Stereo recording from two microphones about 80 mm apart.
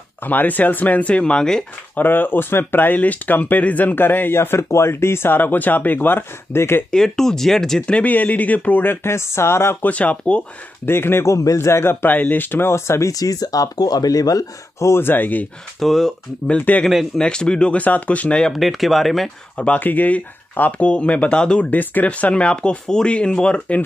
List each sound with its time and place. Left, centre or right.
0.2 s speech: left
2.0 s speech: left
6.9 s speech: centre; by 9.8 s left
9.8 s speech: centre
10.9 s a man's voice: left
13.1 s speech: left
15.8 s speech: centre
16.4 s speech: centre
16.8 s speech: centre
17.2 s speech: centre
18.5 s speech: centre
19.5 s speech: centre